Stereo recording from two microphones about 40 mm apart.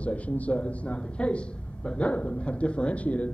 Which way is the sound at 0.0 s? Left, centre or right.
Left.